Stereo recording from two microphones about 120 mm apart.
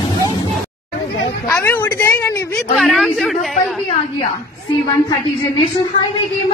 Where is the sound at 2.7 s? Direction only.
Centre (ahead or behind).